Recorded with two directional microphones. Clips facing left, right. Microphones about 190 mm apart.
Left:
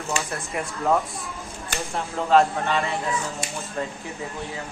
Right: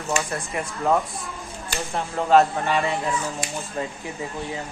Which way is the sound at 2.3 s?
10° right (ahead or behind).